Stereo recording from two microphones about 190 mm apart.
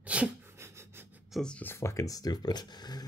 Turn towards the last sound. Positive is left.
turn(degrees=20)  # may be behind; listen again after turning